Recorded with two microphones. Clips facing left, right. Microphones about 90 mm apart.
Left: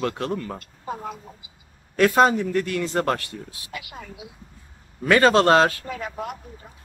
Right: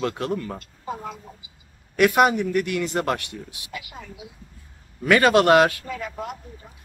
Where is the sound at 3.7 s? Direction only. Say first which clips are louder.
Left 1 dB; 50° left (ahead or behind).